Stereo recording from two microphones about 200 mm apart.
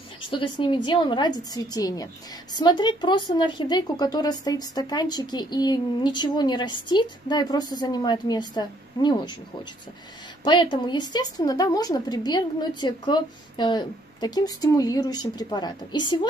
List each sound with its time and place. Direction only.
0.2 s speech: 25° left (ahead or behind)
10.4 s speech: 25° left (ahead or behind)